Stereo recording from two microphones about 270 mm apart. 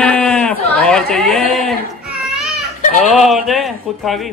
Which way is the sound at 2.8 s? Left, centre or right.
Left.